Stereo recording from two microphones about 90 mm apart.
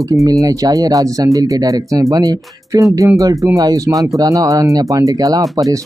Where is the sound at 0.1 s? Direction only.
40° right (ahead or behind).